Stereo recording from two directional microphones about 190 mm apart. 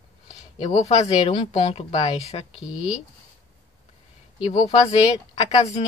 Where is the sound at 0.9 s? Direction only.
35° left (ahead or behind).